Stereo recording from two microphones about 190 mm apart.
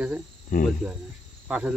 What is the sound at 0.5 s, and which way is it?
Speech, 45° left (ahead or behind).